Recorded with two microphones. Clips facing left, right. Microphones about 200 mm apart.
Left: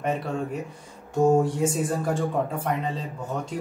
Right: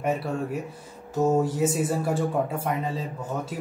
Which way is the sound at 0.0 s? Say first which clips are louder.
Even; 5° right (ahead or behind).